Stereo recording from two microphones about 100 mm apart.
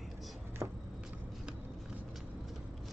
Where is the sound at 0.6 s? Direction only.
25° right (ahead or behind).